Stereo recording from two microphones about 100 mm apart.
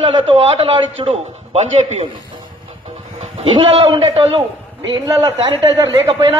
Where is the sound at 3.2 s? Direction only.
75° right (ahead or behind).